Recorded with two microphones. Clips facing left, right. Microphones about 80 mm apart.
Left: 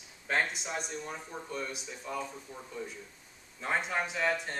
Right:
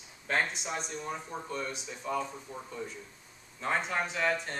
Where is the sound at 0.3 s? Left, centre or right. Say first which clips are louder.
Even; centre.